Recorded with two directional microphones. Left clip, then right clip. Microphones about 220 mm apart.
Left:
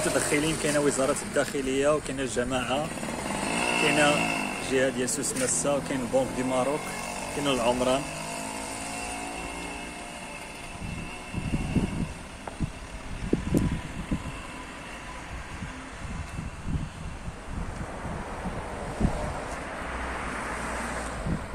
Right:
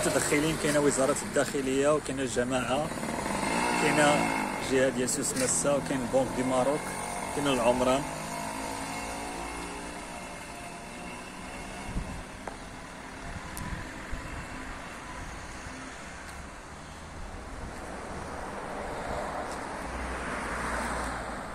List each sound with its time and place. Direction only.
0.0 s speech: centre (ahead or behind)
3.3 s chainsaw: 50° left (ahead or behind)
3.8 s speech: centre (ahead or behind)
8.2 s vehicle: 50° left (ahead or behind)